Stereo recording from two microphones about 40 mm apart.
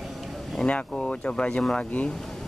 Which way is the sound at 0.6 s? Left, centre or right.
Centre.